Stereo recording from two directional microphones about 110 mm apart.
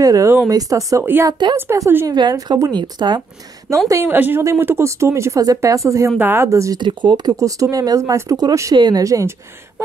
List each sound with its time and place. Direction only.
0.0 s speech: 30° right (ahead or behind)
2.0 s speech: 35° right (ahead or behind)
3.9 s speech: 20° right (ahead or behind)
6.8 s speech: 45° right (ahead or behind)
7.3 s speech: 30° right (ahead or behind)